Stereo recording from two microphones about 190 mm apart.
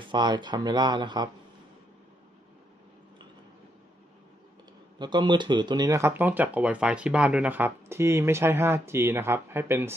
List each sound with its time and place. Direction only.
0.0 s speech: 25° right (ahead or behind)
4.9 s speech: 25° right (ahead or behind)